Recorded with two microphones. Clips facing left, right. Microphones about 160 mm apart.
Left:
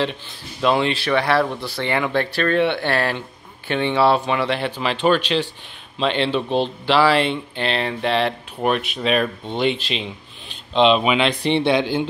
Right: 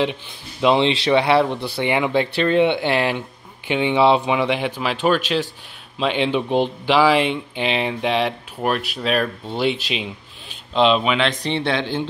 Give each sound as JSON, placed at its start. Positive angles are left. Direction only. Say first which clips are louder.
{"t": 0.0, "sound": "speech", "louder": "right 2 dB", "side_deg": -15}